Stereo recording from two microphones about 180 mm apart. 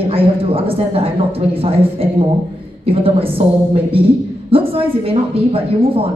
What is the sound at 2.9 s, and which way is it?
Speech, 30° right (ahead or behind).